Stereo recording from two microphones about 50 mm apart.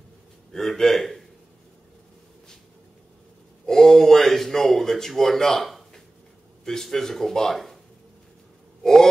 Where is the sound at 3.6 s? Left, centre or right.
Centre.